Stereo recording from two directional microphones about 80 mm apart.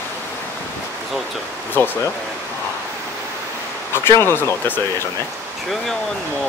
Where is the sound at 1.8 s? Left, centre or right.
Left.